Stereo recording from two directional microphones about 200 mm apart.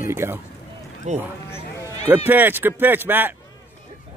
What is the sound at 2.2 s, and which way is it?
Speech, 10° right (ahead or behind).